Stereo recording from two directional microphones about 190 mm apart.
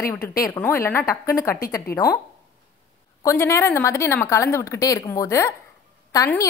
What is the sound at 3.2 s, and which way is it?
A woman's voice, 15° left (ahead or behind).